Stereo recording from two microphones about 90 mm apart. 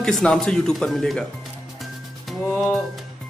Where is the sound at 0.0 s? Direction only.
10° left (ahead or behind).